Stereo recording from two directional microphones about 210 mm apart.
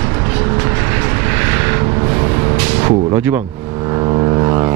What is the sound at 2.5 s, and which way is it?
Music, 10° right (ahead or behind).